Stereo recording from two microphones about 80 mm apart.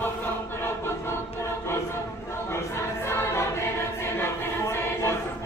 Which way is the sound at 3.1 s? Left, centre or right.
Left.